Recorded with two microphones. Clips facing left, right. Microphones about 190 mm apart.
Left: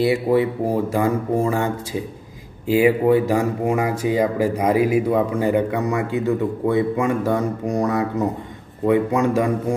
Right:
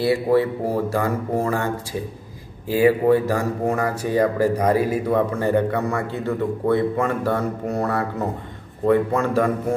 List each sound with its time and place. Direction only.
0.0 s speech: 15° left (ahead or behind)
2.7 s speech: 15° left (ahead or behind)